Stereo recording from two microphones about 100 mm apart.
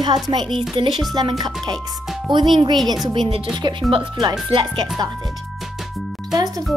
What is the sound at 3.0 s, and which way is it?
Speech, 50° right (ahead or behind).